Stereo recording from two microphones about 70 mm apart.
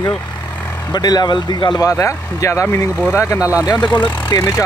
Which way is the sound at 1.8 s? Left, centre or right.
Left.